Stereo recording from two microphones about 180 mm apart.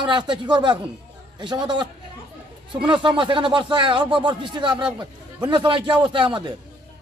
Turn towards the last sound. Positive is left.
turn(degrees=-25)  # may be behind; listen again after turning